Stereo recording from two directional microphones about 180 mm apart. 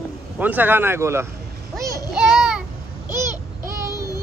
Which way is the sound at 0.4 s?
10° right (ahead or behind).